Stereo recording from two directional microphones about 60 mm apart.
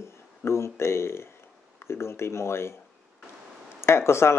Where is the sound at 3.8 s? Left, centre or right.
Left.